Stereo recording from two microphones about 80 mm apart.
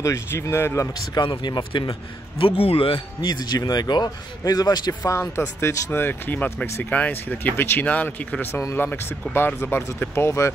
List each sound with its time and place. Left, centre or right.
0.0 s speech: left
0.9 s a man's voice: left
2.9 s a man's voice: left
5.1 s speech: left; by 9.4 s centre
9.6 s speech: left